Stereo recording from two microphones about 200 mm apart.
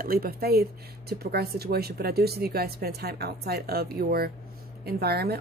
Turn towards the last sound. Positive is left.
turn(degrees=-50)  # may be behind; listen again after turning